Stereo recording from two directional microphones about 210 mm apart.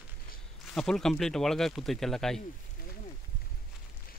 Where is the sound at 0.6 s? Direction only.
Centre (ahead or behind).